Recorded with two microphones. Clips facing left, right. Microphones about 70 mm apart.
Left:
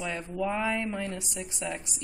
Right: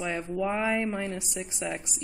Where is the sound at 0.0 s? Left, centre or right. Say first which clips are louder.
Right 2 dB; centre.